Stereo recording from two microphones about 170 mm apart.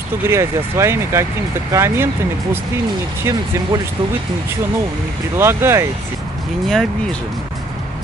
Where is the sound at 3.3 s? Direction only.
15° right (ahead or behind).